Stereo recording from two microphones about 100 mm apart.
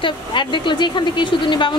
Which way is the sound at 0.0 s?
55° left (ahead or behind).